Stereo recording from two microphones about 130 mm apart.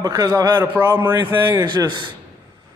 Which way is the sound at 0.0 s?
25° right (ahead or behind).